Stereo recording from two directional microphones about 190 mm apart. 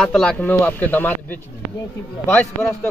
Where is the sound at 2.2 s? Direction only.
10° left (ahead or behind).